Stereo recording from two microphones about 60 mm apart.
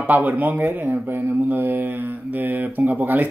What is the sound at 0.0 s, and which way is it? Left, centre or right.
Speech, right.